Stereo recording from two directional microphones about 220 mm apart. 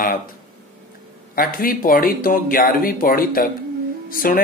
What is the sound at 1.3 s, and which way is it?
Music, 40° left (ahead or behind).